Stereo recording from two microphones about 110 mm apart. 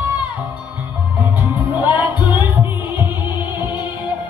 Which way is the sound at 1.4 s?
15° right (ahead or behind).